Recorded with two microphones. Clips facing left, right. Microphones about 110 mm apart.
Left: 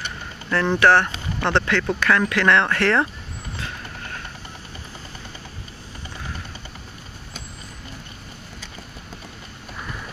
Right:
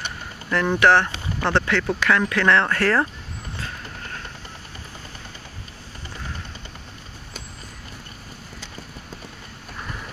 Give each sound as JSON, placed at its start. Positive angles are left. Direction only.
{"t": 0.5, "sound": "speech", "side_deg": -5}